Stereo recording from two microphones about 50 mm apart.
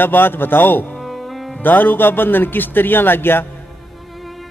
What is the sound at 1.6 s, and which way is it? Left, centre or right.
A man's voice, left.